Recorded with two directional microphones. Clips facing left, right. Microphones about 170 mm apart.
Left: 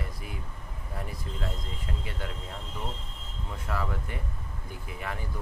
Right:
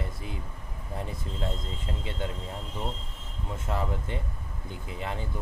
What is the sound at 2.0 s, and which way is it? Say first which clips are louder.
Speech: right 5 dB; 25° right (ahead or behind).